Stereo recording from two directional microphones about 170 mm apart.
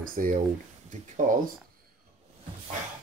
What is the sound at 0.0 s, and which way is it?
Speech, 55° right (ahead or behind).